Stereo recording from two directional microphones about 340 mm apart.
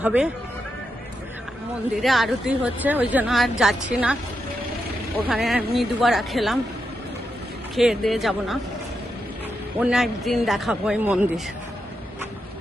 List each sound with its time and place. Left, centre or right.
0.0 s speech: centre
2.0 s speech: centre
5.2 s speech: centre
7.7 s speech: centre
9.8 s speech: centre